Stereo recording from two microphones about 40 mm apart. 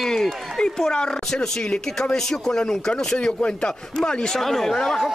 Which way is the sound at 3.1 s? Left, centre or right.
Left.